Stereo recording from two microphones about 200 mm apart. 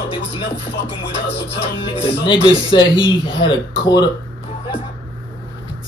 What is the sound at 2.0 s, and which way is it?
Speech, 25° left (ahead or behind).